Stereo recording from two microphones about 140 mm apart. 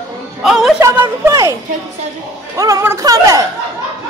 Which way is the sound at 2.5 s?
25° right (ahead or behind).